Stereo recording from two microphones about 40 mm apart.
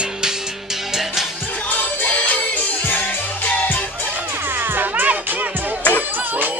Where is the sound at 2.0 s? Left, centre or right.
Left.